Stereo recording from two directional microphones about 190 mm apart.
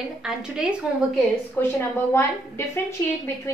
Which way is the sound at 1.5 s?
10° left (ahead or behind).